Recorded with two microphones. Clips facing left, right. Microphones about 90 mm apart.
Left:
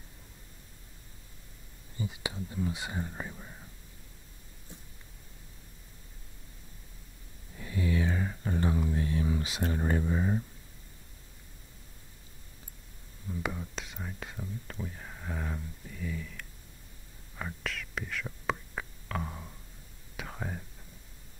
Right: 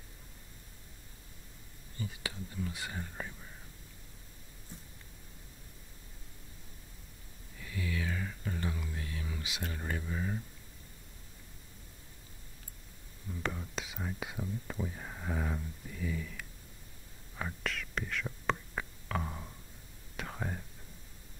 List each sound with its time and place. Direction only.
2.0 s speech: 20° left (ahead or behind)
7.5 s a sound: 30° left (ahead or behind)
13.3 s whispering: 5° left (ahead or behind)